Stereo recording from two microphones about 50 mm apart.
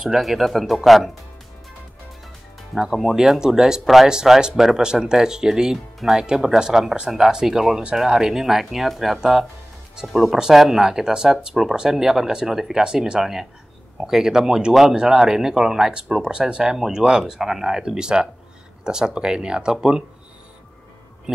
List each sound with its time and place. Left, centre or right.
0.0 s speech: centre
2.7 s speech: centre
10.3 s speech: centre